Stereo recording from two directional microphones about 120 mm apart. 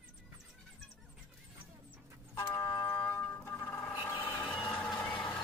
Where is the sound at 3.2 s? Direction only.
20° left (ahead or behind).